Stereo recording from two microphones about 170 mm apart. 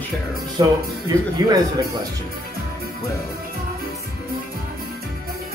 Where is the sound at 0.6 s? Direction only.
25° right (ahead or behind).